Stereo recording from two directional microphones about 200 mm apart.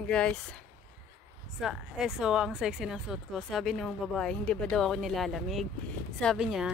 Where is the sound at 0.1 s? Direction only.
5° left (ahead or behind).